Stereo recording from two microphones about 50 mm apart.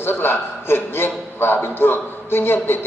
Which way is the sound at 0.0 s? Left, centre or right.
Left.